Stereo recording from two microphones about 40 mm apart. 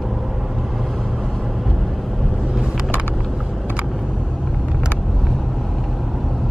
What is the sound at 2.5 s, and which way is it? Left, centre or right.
Vehicle, centre.